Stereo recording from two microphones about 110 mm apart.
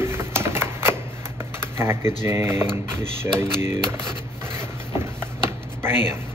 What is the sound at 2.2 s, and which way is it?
Speech, 20° right (ahead or behind).